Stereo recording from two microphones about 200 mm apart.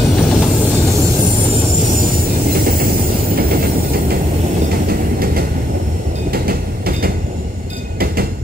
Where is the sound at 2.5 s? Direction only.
50° right (ahead or behind).